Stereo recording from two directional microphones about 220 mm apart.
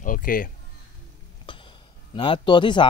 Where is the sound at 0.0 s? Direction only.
40° left (ahead or behind).